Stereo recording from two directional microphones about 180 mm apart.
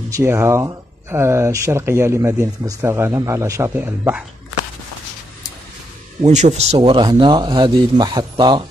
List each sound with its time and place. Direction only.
0.1 s speech: 15° right (ahead or behind)
6.2 s speech: 40° right (ahead or behind); by 8.6 s 25° right (ahead or behind)